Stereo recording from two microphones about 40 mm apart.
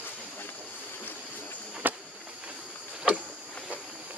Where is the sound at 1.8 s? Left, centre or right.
Right.